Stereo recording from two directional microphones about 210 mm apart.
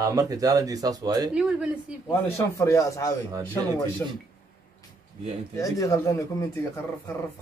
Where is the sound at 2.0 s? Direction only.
15° left (ahead or behind).